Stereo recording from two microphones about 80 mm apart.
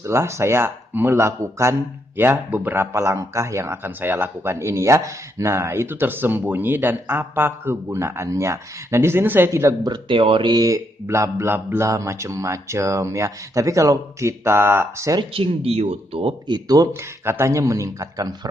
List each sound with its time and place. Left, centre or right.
0.0 s speech: right
9.5 s speech: right
9.8 s speech: right
11.1 s speech: right
11.9 s speech: right
16.4 s speech: right
16.9 s speech: right